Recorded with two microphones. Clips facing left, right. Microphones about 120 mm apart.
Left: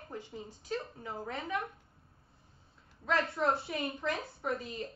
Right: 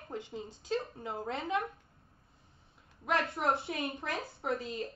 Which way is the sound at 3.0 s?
15° right (ahead or behind).